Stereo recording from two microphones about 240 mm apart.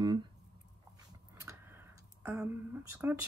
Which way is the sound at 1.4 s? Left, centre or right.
Centre.